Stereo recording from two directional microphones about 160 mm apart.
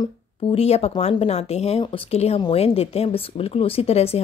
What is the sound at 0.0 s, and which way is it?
Speech, 35° left (ahead or behind).